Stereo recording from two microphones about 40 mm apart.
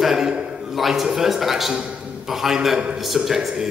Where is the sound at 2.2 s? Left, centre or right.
Centre.